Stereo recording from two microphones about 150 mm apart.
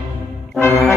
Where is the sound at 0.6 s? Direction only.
15° left (ahead or behind).